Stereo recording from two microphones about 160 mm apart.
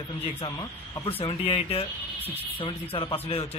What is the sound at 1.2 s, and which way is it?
Speech, 35° left (ahead or behind).